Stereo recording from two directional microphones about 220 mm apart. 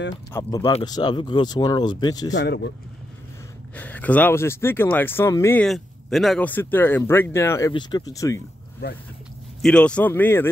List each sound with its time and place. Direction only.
0.1 s speech: 15° left (ahead or behind)
2.3 s speech: 50° left (ahead or behind)
3.7 s speech: 5° left (ahead or behind)
9.6 s speech: 5° left (ahead or behind)